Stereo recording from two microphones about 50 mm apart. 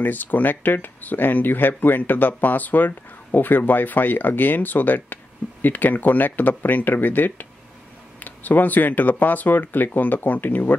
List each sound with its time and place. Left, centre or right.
0.0 s speech: left